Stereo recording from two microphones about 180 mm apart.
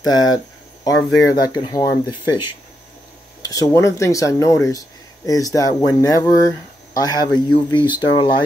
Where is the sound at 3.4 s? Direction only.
20° left (ahead or behind).